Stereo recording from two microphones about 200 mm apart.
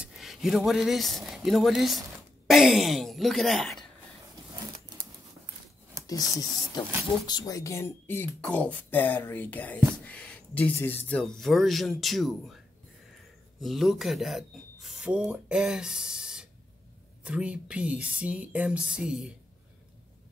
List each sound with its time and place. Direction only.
0.0 s speech: centre (ahead or behind)
6.0 s speech: 20° left (ahead or behind); by 12.5 s centre (ahead or behind)
13.6 s speech: centre (ahead or behind)